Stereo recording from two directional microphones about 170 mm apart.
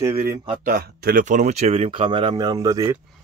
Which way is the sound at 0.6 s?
60° right (ahead or behind).